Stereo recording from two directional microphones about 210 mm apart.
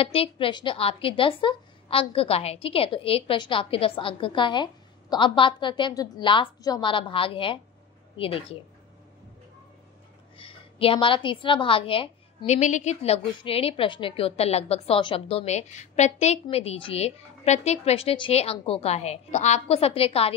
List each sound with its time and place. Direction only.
0.0 s a woman's voice: 25° left (ahead or behind)
10.3 s a woman's voice: 25° left (ahead or behind)